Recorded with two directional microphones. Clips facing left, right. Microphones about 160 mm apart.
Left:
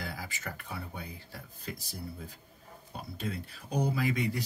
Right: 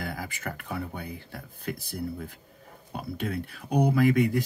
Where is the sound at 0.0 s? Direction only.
55° right (ahead or behind).